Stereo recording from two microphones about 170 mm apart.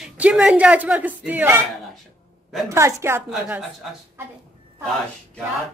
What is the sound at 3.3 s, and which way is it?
Speech, centre (ahead or behind).